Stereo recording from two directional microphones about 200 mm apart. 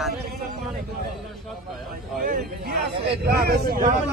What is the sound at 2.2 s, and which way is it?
Speech, 45° right (ahead or behind).